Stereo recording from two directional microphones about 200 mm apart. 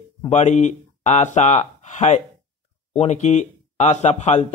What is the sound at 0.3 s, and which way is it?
Speech, 35° left (ahead or behind).